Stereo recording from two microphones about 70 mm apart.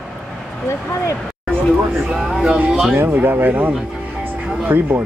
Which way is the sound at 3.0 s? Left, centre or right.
Right.